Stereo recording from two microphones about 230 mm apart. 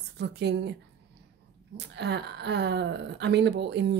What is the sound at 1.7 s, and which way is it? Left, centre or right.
Speech, right.